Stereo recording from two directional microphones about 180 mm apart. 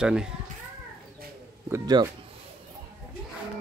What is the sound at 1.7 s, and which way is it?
Speech, 20° right (ahead or behind).